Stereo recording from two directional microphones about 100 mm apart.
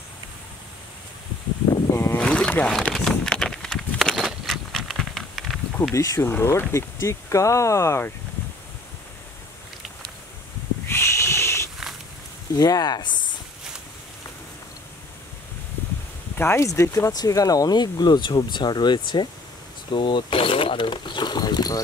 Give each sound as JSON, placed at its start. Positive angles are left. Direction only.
{"t": 1.9, "sound": "a sound", "side_deg": 25}
{"t": 2.1, "sound": "boat", "side_deg": 10}
{"t": 2.9, "sound": "a sound", "side_deg": 5}
{"t": 5.9, "sound": "speech", "side_deg": 25}
{"t": 10.9, "sound": "pig", "side_deg": 25}
{"t": 12.5, "sound": "speech", "side_deg": 40}
{"t": 16.3, "sound": "speech", "side_deg": 25}